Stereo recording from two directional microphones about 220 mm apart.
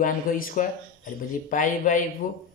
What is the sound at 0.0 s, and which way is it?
A man's voice, 35° left (ahead or behind).